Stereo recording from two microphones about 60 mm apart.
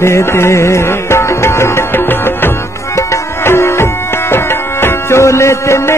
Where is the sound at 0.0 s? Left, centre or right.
Left.